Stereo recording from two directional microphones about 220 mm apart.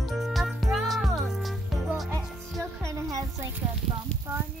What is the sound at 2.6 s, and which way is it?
Music, 15° right (ahead or behind).